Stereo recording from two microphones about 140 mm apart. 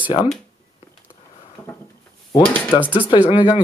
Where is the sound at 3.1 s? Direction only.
35° left (ahead or behind).